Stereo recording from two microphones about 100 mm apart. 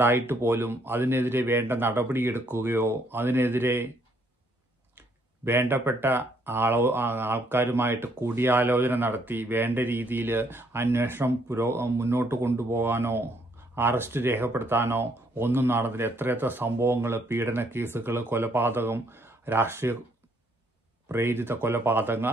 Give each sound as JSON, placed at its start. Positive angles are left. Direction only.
{"t": 0.0, "sound": "speech", "side_deg": -25}
{"t": 4.9, "sound": "speech", "side_deg": -25}
{"t": 21.1, "sound": "speech", "side_deg": -25}